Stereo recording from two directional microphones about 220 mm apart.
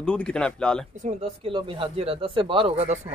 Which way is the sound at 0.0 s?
5° left (ahead or behind).